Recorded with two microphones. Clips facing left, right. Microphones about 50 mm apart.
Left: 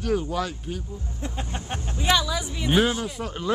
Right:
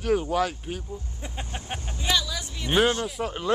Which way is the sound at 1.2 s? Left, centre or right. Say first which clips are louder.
Left 4 dB; centre.